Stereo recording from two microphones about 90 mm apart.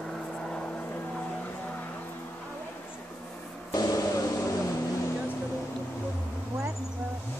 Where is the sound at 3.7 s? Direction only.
45° left (ahead or behind).